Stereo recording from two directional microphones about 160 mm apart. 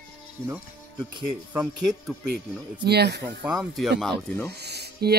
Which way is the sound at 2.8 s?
90° right.